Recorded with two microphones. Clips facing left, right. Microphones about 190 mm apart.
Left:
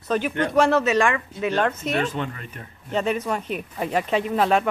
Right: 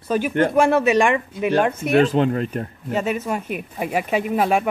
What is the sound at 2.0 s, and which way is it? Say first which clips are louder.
Speech: right 11 dB; 35° right (ahead or behind).